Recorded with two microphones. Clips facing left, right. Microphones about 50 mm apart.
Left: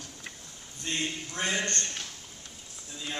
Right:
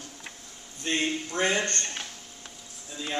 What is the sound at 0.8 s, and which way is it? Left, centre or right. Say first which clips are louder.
A man's voice: right 5 dB; right.